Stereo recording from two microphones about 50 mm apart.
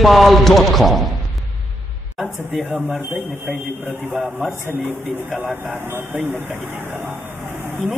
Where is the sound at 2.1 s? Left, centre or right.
Centre.